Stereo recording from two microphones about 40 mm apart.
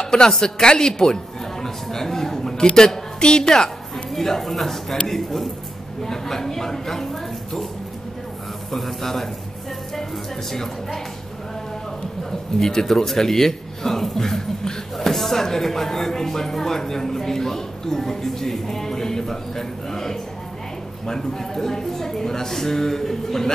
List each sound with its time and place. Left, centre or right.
0.0 s a man's voice: centre
8.7 s speech: centre
10.5 s speech: centre
12.3 s speech: centre